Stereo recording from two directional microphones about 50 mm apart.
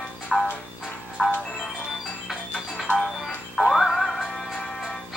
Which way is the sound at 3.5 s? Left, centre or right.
Centre.